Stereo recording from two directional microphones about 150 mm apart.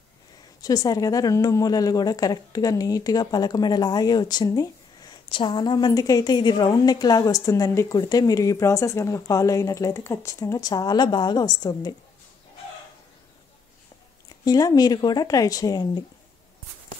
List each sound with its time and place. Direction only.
0.6 s a woman's voice: 25° left (ahead or behind)
14.4 s a woman's voice: 25° left (ahead or behind)